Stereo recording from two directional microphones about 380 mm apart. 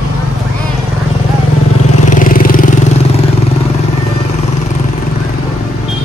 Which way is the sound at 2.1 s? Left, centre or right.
Left.